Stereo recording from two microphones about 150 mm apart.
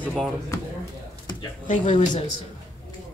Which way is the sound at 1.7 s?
50° left (ahead or behind).